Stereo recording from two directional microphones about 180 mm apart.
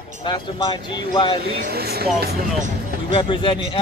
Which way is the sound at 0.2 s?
25° left (ahead or behind).